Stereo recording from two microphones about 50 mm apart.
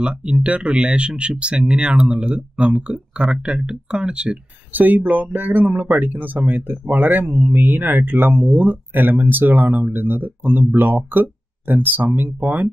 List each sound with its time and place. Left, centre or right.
0.0 s speech: centre
4.7 s speech: right